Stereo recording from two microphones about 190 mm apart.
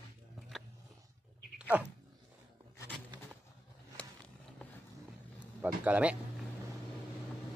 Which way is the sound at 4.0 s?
5° left (ahead or behind).